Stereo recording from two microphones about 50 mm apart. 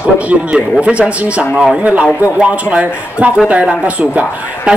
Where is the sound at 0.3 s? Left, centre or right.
Right.